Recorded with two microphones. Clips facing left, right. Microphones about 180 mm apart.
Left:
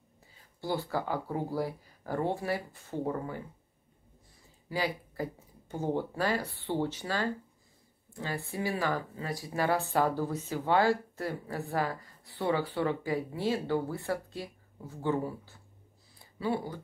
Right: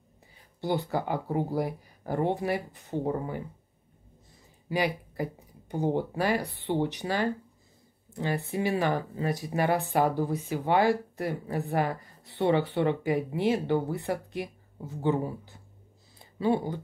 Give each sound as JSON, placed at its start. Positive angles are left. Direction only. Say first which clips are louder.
{"t": 0.6, "sound": "speech", "louder": "right 4 dB", "side_deg": -20}
{"t": 4.6, "sound": "speech", "louder": "right 4 dB", "side_deg": -20}